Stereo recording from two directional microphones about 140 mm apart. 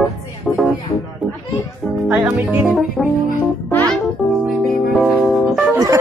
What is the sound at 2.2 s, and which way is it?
Music, 10° right (ahead or behind).